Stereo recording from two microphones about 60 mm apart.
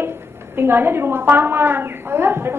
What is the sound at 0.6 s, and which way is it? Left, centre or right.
A woman's voice, right.